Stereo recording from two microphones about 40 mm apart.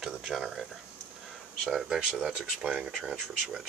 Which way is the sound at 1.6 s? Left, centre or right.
Centre.